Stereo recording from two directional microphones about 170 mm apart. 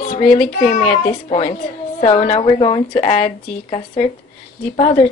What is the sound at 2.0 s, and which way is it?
A woman's voice, 35° left (ahead or behind).